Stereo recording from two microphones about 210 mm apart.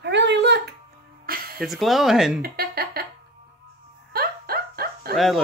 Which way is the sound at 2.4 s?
45° right (ahead or behind).